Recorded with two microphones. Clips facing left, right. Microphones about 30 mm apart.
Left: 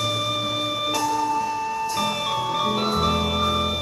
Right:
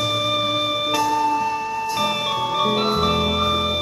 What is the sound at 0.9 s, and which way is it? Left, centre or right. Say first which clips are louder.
Music: right 3 dB; centre.